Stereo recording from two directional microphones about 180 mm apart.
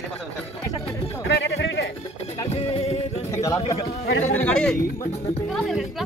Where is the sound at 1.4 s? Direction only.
90° left.